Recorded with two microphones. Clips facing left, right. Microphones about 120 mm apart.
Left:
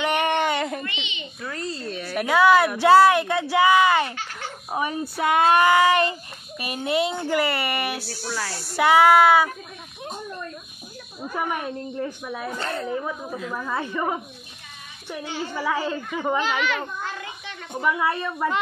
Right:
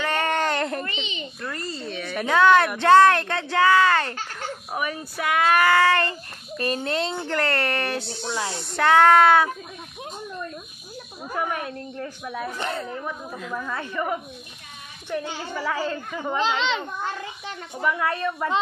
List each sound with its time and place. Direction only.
0.0 s a sound: 15° left (ahead or behind)
1.0 s a child's voice: 35° right (ahead or behind)
1.4 s a woman's voice: centre (ahead or behind)
8.0 s speech: 20° right (ahead or behind)
8.6 s speech: 10° left (ahead or behind)
12.5 s speech: 15° right (ahead or behind)
12.8 s a woman's voice: 10° left (ahead or behind)
15.0 s a woman's voice: 10° left (ahead or behind)
16.4 s speech: 20° right (ahead or behind)
17.9 s a woman's voice: 10° left (ahead or behind)